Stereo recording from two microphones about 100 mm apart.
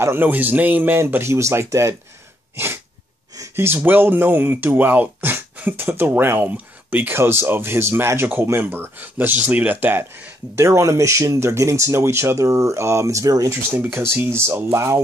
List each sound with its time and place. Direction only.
0.0 s speech: 20° right (ahead or behind)
2.5 s sneeze: 25° right (ahead or behind)
3.3 s speech: 30° right (ahead or behind)